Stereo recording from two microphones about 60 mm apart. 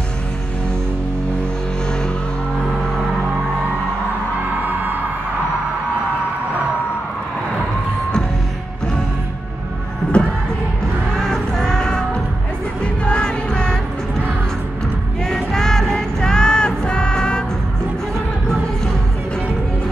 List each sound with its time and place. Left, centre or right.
10.1 s music: centre
15.2 s music: centre